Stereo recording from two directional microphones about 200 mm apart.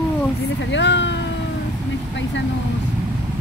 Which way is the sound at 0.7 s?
65° left (ahead or behind).